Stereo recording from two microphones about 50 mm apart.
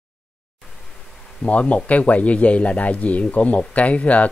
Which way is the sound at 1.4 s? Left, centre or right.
Left.